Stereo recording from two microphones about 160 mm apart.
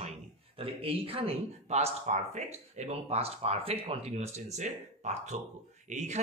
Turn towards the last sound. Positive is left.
turn(degrees=-45)  # may be behind; listen again after turning